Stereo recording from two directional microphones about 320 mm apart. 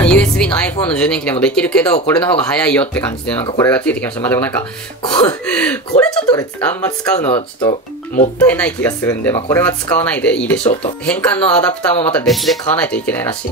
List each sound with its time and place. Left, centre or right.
0.0 s speech: centre
8.5 s speech: centre
10.6 s speech: centre
11.1 s speech: centre